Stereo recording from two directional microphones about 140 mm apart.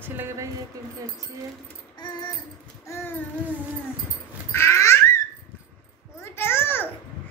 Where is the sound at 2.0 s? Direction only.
30° left (ahead or behind).